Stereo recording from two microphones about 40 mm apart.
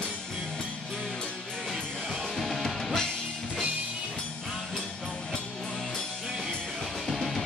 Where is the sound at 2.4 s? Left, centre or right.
Centre.